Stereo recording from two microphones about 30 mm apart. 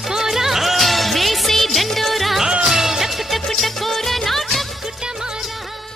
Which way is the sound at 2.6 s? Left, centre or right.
Centre.